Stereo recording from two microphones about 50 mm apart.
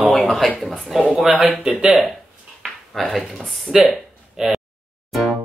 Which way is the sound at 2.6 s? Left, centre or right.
Centre.